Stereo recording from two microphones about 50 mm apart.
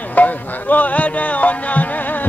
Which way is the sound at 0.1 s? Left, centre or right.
Left.